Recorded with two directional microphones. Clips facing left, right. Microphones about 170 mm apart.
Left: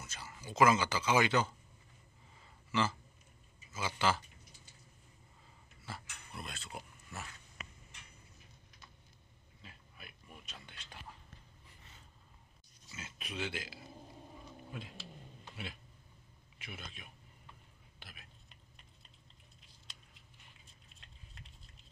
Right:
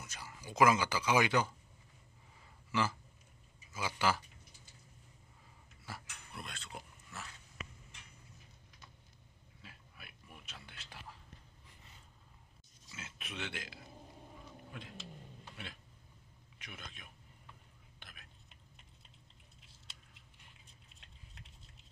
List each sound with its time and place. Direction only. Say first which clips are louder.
0.0 s speech: even; 15° right (ahead or behind)
2.7 s speech: left 1 dB; 10° right (ahead or behind)
6.3 s a sound: left 2 dB; 5° left (ahead or behind)
9.6 s a sound: left 1 dB; 5° right (ahead or behind)
12.8 s pig: left 1 dB; centre (ahead or behind)
14.7 s vehicle: left 2 dB; 10° left (ahead or behind)
15.5 s a sound: left 4 dB; 10° left (ahead or behind)
16.5 s a man's voice: left 3 dB; 5° left (ahead or behind)
17.9 s whispering: left 2 dB; 5° left (ahead or behind)